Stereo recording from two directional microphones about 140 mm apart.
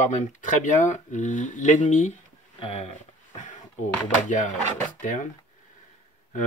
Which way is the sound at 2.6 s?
45° left (ahead or behind).